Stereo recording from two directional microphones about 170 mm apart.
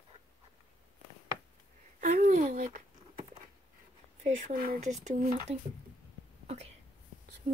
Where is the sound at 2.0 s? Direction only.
50° right (ahead or behind).